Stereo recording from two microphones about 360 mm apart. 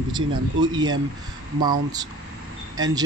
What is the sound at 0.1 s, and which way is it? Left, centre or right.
Speech, centre.